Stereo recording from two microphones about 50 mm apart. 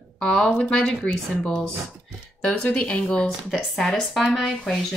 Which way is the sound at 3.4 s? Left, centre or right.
Centre.